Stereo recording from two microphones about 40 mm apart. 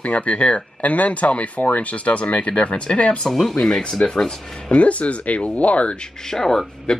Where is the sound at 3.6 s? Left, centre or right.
Left.